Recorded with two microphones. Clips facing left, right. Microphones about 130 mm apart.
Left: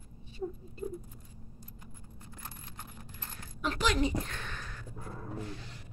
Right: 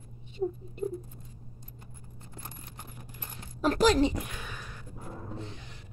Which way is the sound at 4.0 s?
15° right (ahead or behind).